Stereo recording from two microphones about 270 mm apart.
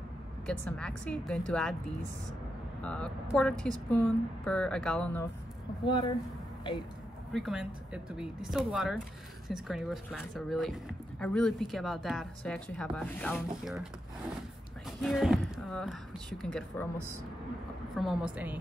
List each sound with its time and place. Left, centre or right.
0.5 s speech: centre
2.8 s speech: centre
5.9 s speech: centre
7.3 s speech: centre
15.0 s speech: centre
17.9 s speech: centre